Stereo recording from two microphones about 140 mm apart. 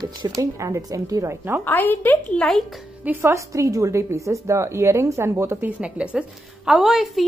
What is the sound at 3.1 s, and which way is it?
A woman's voice, 20° right (ahead or behind).